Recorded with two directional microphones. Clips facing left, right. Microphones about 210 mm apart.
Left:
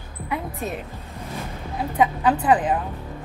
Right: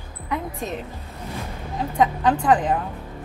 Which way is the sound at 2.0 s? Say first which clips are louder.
Even; 5° left (ahead or behind).